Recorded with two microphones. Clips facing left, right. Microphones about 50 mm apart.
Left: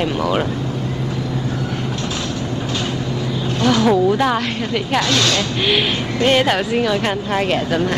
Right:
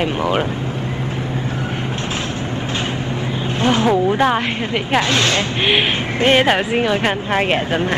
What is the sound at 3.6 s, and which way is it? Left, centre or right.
Speech, right.